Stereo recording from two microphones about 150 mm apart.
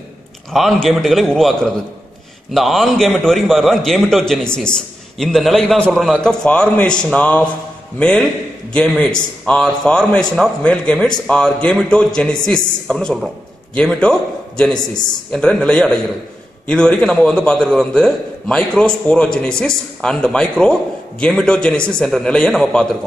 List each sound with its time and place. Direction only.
0.5 s a man's voice: centre (ahead or behind)
15.3 s a man's voice: 5° left (ahead or behind)